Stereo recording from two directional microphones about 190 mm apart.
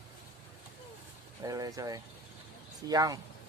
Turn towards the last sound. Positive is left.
turn(degrees=-20)  # may be behind; listen again after turning